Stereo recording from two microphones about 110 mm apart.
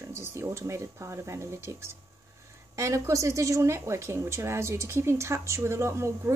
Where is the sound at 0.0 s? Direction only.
25° right (ahead or behind).